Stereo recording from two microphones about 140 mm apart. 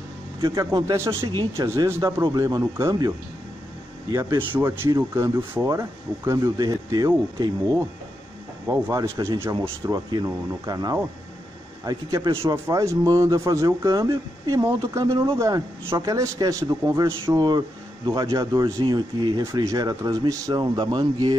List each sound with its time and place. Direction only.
0.6 s speech: 20° right (ahead or behind)
4.3 s speech: 35° right (ahead or behind)
4.6 s speech: 15° right (ahead or behind)
8.6 s speech: 20° right (ahead or behind)